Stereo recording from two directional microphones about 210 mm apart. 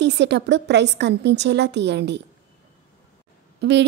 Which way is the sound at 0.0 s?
55° right (ahead or behind).